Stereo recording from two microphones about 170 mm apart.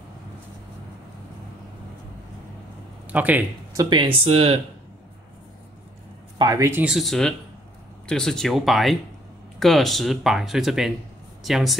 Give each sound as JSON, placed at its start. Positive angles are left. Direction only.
{"t": 3.1, "sound": "speech", "side_deg": -10}
{"t": 3.7, "sound": "speech", "side_deg": -25}
{"t": 6.3, "sound": "speech", "side_deg": -20}
{"t": 6.8, "sound": "speech", "side_deg": 0}